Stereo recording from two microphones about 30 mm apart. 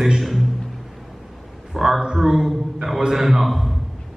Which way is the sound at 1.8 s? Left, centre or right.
Centre.